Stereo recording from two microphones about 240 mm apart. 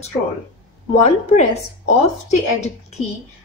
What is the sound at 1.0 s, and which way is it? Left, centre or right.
Speech, left.